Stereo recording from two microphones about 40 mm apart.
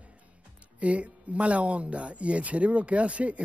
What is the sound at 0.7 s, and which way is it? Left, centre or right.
Speech, right.